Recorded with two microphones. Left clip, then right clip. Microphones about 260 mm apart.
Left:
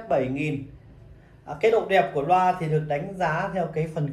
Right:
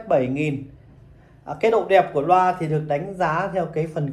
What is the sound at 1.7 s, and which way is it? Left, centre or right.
Speech, right.